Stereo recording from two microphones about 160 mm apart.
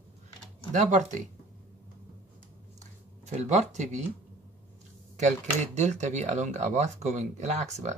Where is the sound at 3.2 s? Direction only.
45° right (ahead or behind).